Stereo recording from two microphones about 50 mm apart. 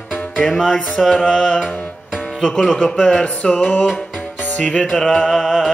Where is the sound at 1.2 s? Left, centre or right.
Centre.